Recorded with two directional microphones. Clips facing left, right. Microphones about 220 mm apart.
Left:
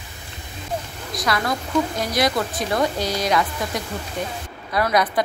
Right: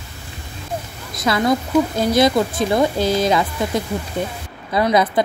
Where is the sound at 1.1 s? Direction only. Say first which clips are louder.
Right 6 dB; 25° right (ahead or behind).